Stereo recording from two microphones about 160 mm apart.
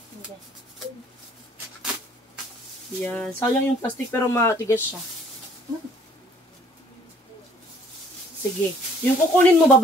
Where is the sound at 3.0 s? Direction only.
10° left (ahead or behind).